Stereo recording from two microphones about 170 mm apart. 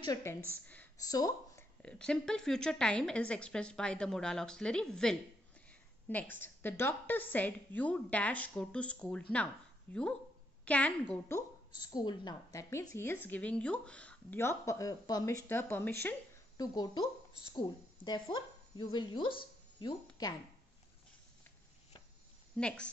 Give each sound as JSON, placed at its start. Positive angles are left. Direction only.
{"t": 0.0, "sound": "a woman's voice", "side_deg": 20}
{"t": 1.8, "sound": "a woman's voice", "side_deg": 5}
{"t": 11.9, "sound": "a woman's voice", "side_deg": 25}
{"t": 16.5, "sound": "a woman's voice", "side_deg": 25}
{"t": 22.6, "sound": "speech", "side_deg": 5}